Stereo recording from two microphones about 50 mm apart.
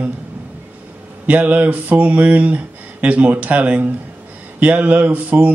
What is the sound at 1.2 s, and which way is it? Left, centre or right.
Speech, right.